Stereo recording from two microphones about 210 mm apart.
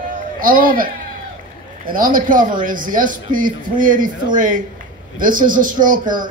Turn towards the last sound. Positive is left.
turn(degrees=-40)  # may be behind; listen again after turning